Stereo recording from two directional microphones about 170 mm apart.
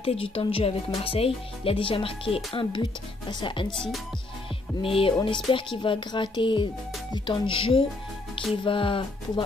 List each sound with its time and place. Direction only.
0.0 s speech: 35° left (ahead or behind)
3.7 s speech: 5° left (ahead or behind)
4.8 s speech: 35° left (ahead or behind)